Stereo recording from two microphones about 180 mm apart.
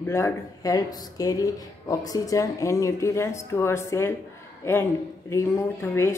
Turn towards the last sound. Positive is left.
turn(degrees=15)  # may be behind; listen again after turning